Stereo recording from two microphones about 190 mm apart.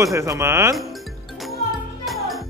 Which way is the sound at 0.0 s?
15° right (ahead or behind).